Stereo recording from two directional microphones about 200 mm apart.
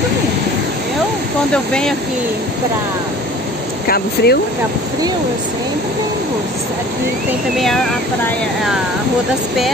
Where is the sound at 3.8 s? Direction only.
50° left (ahead or behind).